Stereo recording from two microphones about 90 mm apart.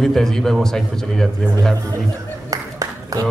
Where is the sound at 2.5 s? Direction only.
40° right (ahead or behind).